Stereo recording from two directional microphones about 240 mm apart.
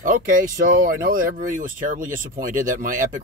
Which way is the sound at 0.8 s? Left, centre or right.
Right.